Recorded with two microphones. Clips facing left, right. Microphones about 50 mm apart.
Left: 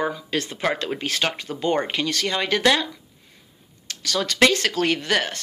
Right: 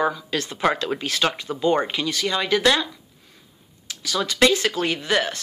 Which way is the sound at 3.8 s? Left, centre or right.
Left.